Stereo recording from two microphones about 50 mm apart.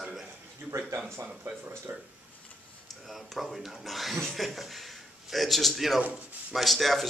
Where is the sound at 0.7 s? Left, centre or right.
Right.